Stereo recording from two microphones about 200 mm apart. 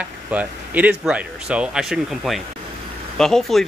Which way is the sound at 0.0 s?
5° right (ahead or behind).